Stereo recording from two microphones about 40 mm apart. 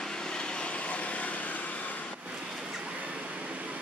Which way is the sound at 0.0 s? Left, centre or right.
Centre.